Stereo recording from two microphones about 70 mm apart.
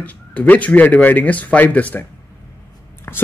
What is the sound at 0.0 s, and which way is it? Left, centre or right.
Speech, left.